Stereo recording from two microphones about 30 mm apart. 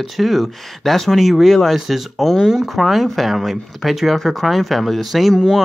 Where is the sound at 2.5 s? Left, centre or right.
Centre.